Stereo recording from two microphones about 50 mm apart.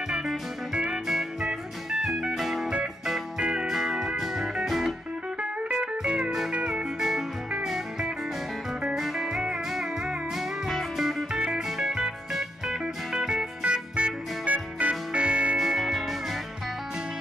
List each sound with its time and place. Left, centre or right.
1.0 s music: centre
3.3 s music: centre
3.6 s music: centre
5.4 s music: centre
8.9 s music: centre
11.3 s music: centre
15.6 s music: centre